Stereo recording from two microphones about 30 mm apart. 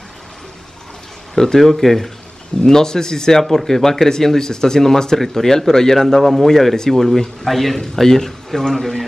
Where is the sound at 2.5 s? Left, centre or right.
Left; by 7.8 s centre.